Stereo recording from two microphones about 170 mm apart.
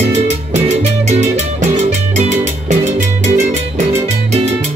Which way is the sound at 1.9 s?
45° right (ahead or behind).